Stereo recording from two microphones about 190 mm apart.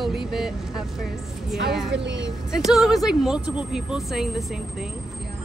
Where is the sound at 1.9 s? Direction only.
65° right (ahead or behind).